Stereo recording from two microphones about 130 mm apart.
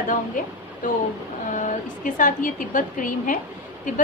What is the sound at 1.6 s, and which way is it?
A woman's voice, 85° left.